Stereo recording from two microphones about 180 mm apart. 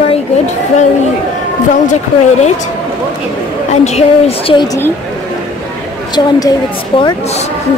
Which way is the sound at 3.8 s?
35° left (ahead or behind).